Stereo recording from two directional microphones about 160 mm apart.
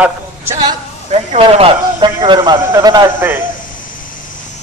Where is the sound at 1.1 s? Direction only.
40° right (ahead or behind); by 3.1 s 25° right (ahead or behind).